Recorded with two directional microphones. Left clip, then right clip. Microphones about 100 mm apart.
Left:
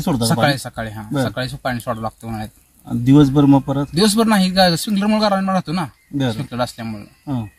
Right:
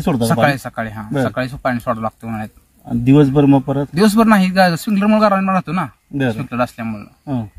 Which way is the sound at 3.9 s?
10° left (ahead or behind).